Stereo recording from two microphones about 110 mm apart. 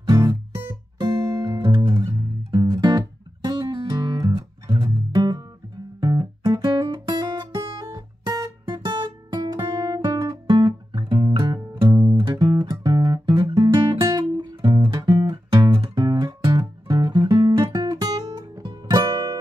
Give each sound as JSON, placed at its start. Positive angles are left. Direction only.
{"t": 0.1, "sound": "music", "side_deg": -40}
{"t": 0.9, "sound": "guitar", "side_deg": -35}
{"t": 1.6, "sound": "music", "side_deg": -40}
{"t": 5.9, "sound": "guitar", "side_deg": -40}
{"t": 12.0, "sound": "music", "side_deg": -30}
{"t": 12.3, "sound": "music", "side_deg": -45}
{"t": 15.5, "sound": "music", "side_deg": -50}